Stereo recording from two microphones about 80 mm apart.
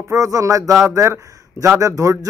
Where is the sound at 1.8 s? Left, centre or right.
Right.